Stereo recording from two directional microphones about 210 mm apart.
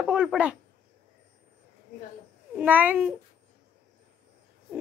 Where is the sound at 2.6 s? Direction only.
10° right (ahead or behind).